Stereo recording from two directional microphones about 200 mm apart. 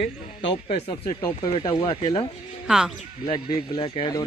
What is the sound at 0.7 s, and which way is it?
A man's voice, 35° left (ahead or behind).